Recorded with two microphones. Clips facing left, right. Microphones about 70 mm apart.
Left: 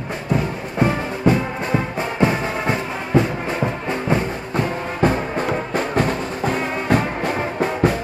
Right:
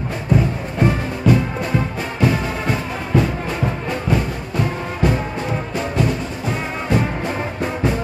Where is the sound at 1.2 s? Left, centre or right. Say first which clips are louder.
Right 1 dB; left.